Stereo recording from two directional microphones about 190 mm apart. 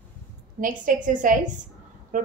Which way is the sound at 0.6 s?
45° right (ahead or behind).